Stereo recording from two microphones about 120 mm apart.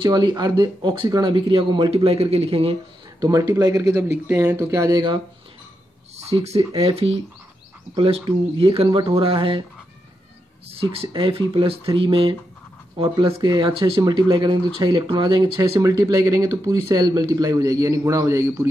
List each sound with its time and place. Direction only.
0.0 s speech: 40° right (ahead or behind); by 2.7 s 55° right (ahead or behind)
3.2 s speech: 30° right (ahead or behind)
3.9 s speech: 20° right (ahead or behind)
6.3 s speech: 60° right (ahead or behind)
10.7 s speech: 50° right (ahead or behind)
15.7 s speech: 30° right (ahead or behind)